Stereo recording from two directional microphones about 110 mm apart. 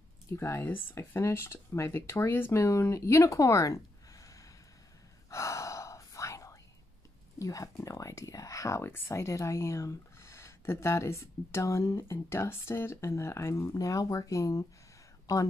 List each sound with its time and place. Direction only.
0.3 s speech: 25° left (ahead or behind)
5.3 s gasp: 30° left (ahead or behind)
7.3 s speech: 30° left (ahead or behind)